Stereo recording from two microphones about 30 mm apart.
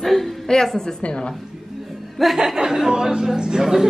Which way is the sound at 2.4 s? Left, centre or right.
Centre.